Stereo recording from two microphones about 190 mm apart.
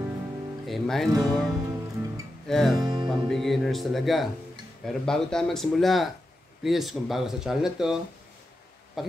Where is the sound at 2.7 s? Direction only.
25° right (ahead or behind).